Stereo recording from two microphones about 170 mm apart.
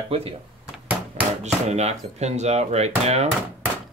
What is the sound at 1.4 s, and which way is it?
Speech, 40° right (ahead or behind).